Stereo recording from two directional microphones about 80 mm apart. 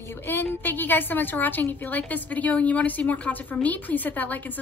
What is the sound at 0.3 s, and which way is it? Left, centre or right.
A woman's voice, left.